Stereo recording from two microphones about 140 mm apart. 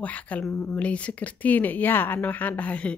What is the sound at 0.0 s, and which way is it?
Speech, 10° left (ahead or behind).